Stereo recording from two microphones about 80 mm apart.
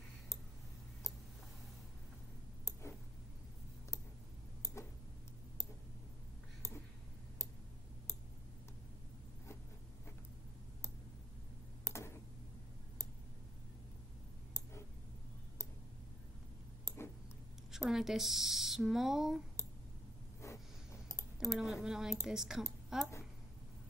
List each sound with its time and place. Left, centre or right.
11.9 s tick: left
14.5 s tick: left
16.8 s tick-tock: left
17.6 s speech: centre
20.4 s clicking: left
21.5 s a woman's voice: centre